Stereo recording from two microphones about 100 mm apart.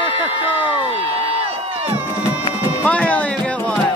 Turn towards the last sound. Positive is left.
turn(degrees=15)  # may be behind; listen again after turning